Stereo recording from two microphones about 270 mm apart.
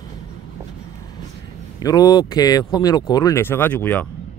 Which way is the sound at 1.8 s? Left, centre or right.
Centre.